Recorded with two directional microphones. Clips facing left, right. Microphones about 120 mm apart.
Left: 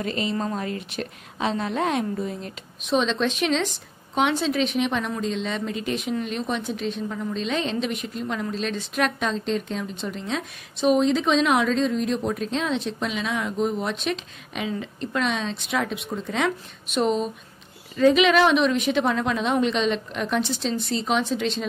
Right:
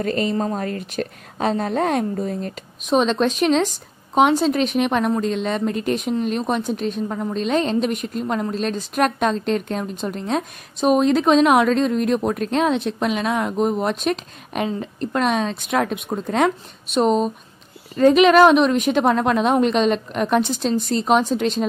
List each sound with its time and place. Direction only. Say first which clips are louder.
0.0 s a woman's voice: right 5 dB; 45° right (ahead or behind)